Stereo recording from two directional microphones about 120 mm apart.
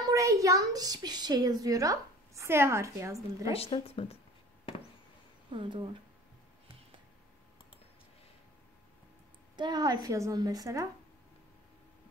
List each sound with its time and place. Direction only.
0.0 s a woman's voice: 25° right (ahead or behind)
3.5 s speech: 55° left (ahead or behind)
5.5 s speech: 45° right (ahead or behind)
9.6 s a woman's voice: 35° right (ahead or behind)